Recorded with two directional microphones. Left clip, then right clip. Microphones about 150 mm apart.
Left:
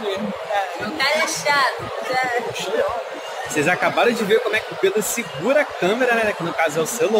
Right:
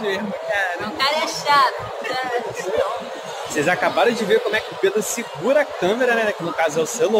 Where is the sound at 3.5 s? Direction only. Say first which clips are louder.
Even; 10° left (ahead or behind).